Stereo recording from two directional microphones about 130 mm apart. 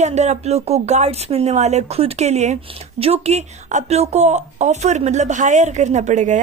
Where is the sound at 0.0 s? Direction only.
60° right (ahead or behind).